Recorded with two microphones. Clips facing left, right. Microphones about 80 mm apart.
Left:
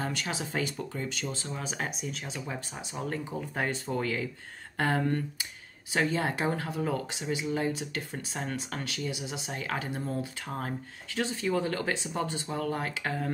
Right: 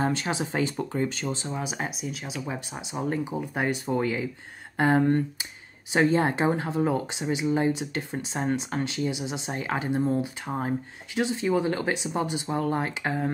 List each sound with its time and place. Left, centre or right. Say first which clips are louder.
0.0 s speech: right 7 dB; right
1.3 s speech: right 5 dB; right
1.6 s speech: right 3 dB; centre
2.4 s speech: right 4 dB; centre